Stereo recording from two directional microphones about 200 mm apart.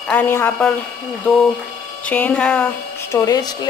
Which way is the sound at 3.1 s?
15° left (ahead or behind).